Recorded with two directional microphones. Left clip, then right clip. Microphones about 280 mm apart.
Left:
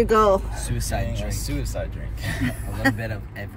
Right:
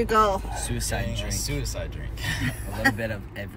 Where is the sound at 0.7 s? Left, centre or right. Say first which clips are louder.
Left 3 dB; centre.